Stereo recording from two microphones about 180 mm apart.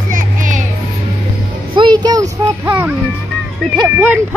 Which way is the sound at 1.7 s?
25° right (ahead or behind).